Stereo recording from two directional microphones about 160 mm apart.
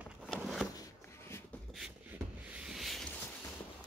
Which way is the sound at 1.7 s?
5° right (ahead or behind).